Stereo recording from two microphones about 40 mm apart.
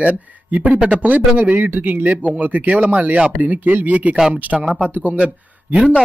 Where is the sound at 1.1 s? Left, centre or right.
Right.